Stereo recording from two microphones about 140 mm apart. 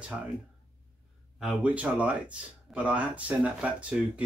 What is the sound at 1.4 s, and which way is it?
Speech, 10° right (ahead or behind).